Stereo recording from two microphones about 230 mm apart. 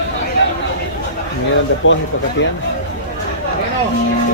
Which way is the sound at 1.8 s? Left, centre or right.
Left.